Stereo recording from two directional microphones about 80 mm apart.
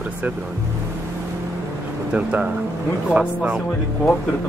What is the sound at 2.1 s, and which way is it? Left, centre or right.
Speech, centre.